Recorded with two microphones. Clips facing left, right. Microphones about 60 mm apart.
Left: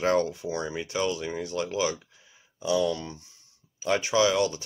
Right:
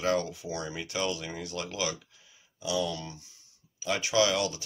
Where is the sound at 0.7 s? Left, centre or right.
Left.